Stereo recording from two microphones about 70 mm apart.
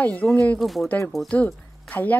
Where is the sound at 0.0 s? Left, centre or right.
Left.